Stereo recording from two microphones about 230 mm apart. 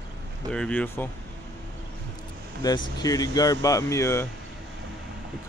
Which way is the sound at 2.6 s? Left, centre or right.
Centre.